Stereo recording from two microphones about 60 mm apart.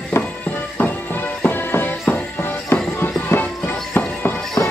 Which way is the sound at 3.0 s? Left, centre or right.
Left.